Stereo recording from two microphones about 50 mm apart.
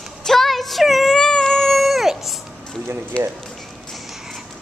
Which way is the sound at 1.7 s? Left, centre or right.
Centre.